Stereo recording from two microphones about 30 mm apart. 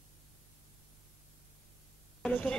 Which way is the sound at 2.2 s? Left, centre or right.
Left.